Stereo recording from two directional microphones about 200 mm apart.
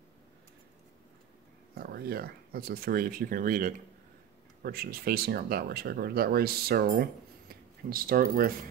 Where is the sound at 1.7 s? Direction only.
50° right (ahead or behind).